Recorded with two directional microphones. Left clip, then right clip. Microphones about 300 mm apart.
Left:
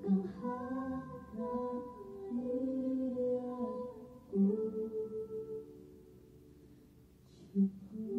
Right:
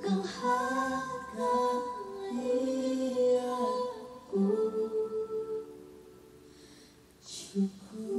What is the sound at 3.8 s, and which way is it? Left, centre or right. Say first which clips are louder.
Music: right 9 dB; centre.